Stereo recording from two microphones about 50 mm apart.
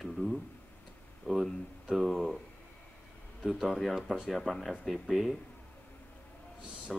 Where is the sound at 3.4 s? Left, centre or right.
Centre.